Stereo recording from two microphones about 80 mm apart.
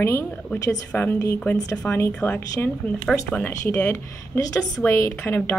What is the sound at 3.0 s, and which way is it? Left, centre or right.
Speech, centre.